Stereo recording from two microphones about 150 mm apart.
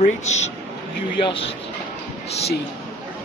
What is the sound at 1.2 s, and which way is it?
Speech, 35° left (ahead or behind).